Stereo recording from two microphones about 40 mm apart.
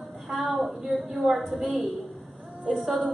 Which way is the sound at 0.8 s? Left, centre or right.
Centre.